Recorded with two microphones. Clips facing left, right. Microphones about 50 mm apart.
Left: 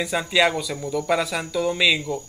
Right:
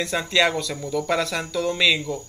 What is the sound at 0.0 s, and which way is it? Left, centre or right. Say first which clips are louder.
Speech: left 1 dB; centre.